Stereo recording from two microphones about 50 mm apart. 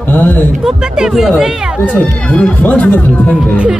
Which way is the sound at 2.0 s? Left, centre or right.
Left.